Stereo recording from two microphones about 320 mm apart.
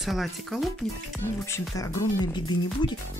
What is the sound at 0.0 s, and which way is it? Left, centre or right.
Speech, centre.